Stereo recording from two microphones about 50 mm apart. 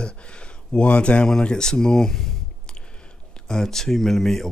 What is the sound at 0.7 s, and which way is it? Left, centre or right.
Speech, left.